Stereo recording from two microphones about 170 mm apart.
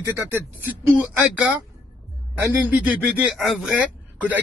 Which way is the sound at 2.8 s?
10° right (ahead or behind).